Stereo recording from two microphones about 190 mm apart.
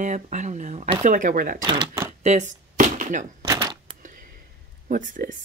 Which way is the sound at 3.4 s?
20° right (ahead or behind).